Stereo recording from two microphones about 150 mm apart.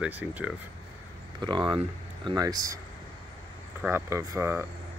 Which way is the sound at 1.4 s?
30° right (ahead or behind).